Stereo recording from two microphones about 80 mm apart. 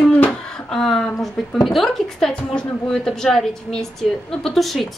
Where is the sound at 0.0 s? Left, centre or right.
Centre.